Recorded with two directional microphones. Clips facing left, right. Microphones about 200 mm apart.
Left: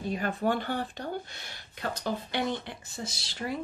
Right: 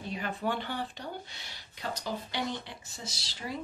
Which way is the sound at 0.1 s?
45° left (ahead or behind).